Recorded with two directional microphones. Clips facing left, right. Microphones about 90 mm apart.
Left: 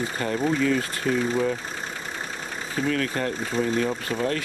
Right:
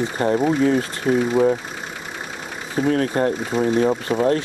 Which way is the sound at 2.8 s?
35° right (ahead or behind).